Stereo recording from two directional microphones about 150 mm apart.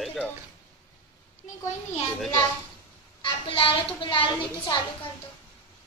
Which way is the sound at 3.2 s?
35° left (ahead or behind).